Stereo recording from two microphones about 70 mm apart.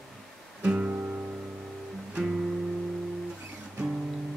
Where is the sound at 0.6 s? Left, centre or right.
Centre.